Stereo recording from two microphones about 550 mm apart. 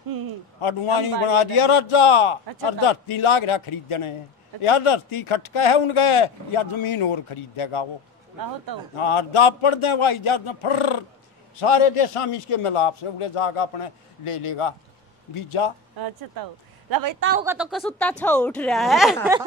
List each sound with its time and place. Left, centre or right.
0.6 s speech: left
8.9 s speech: left
16.0 s speech: right
17.2 s a woman's voice: centre
17.5 s speech: centre